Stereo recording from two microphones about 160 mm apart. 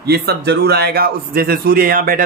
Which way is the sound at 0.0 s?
85° right.